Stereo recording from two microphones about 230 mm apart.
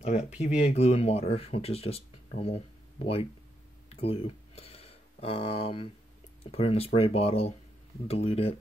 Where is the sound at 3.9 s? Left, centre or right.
Left.